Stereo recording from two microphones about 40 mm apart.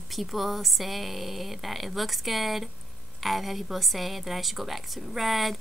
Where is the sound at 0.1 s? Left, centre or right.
Centre.